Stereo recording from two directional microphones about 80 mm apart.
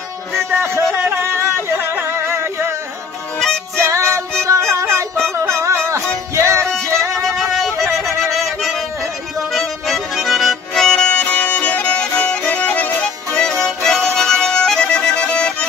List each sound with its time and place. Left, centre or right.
0.6 s speech: right
2.2 s music: right
3.3 s music: centre
3.8 s music: right
7.2 s music: centre
9.5 s accordion: centre
11.1 s music: centre
13.3 s music: centre